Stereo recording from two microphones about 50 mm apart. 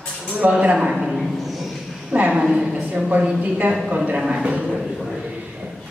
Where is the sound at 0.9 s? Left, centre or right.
Centre.